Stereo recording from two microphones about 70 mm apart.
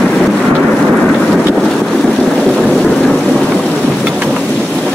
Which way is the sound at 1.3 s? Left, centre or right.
Centre.